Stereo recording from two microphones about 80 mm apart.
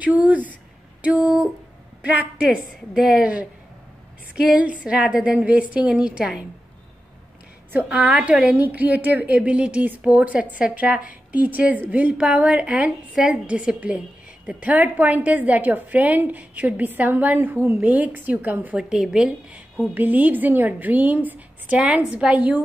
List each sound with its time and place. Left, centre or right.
0.0 s a woman's voice: centre
8.1 s a woman's voice: centre
8.5 s a woman's voice: right
18.8 s a woman's voice: centre
19.9 s a woman's voice: right